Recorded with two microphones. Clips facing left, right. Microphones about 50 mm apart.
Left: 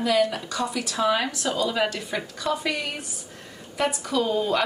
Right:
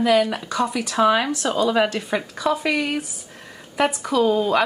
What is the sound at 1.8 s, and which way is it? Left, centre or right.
Speech, right.